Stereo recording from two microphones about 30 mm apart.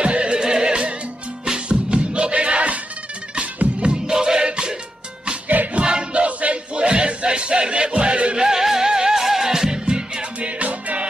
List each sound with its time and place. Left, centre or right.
0.0 s music: right
0.4 s music: right
4.1 s music: right
5.8 s a sound: right
6.2 s music: right
6.7 s a sound: right
7.2 s music: right
8.4 s music: centre
9.8 s music: right
10.4 s music: right